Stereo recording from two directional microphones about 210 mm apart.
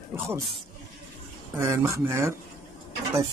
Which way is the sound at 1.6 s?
15° right (ahead or behind).